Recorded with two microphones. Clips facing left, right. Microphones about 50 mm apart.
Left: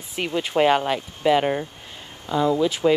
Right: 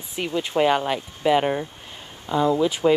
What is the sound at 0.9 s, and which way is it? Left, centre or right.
Speech, centre.